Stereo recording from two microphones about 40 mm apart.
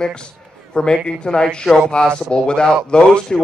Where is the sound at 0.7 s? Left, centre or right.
Left.